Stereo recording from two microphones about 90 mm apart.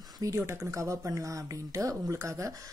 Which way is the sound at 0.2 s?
35° right (ahead or behind).